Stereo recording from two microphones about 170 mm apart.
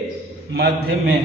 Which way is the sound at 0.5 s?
70° right (ahead or behind).